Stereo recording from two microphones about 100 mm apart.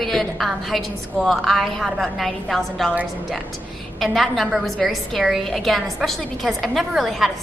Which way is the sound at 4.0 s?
Centre (ahead or behind).